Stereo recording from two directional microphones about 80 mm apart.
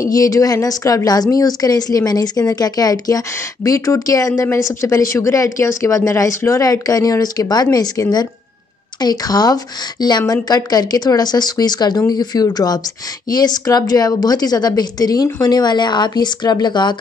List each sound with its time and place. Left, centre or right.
0.1 s a woman's voice: left